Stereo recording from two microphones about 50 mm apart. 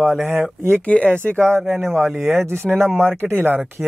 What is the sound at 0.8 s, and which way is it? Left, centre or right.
Speech, left.